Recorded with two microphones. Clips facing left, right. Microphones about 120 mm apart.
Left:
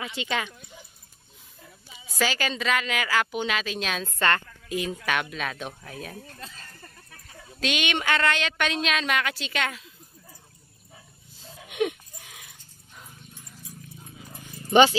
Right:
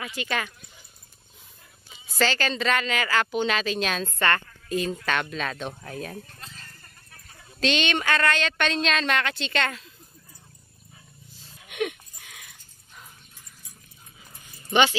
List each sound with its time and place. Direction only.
0.0 s speech: 20° left (ahead or behind)
2.1 s a woman's voice: 10° left (ahead or behind)
4.2 s a woman's voice: 15° left (ahead or behind)
7.6 s a woman's voice: 10° left (ahead or behind)
11.7 s a sound: 25° left (ahead or behind)
14.3 s dog: 35° left (ahead or behind)